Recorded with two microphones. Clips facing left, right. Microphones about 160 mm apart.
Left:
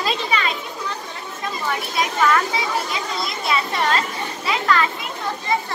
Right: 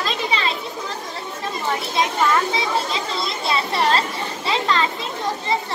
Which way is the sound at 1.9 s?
25° right (ahead or behind).